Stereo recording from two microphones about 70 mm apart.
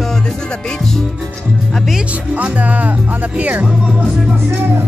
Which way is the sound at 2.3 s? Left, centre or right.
Right.